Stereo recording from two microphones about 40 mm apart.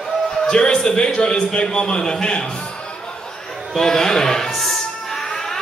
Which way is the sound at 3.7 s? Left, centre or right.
Centre.